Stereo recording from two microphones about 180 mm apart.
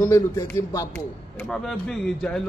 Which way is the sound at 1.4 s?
Centre (ahead or behind).